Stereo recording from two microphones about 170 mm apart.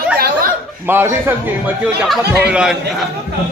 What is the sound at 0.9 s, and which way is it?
A man's voice, 15° right (ahead or behind).